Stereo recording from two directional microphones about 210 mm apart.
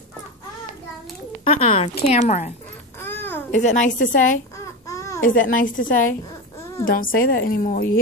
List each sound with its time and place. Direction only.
1.4 s a woman's voice: 25° left (ahead or behind)
3.0 s babbling: 10° left (ahead or behind)
3.5 s a woman's voice: 35° left (ahead or behind)
4.8 s baby cry: 15° left (ahead or behind)
5.2 s a woman's voice: 40° left (ahead or behind)